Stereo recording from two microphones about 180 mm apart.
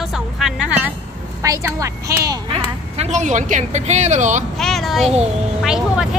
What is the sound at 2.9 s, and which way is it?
A woman's voice, 40° right (ahead or behind).